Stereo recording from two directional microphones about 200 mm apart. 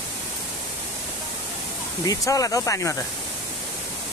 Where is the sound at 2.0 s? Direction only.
15° left (ahead or behind).